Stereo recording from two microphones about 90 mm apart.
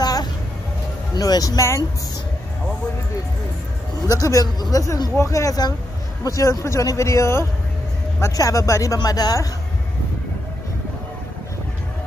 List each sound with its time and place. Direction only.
0.0 s a sound: 50° left (ahead or behind)
1.1 s speech: 45° left (ahead or behind)
4.1 s speech: 40° left (ahead or behind)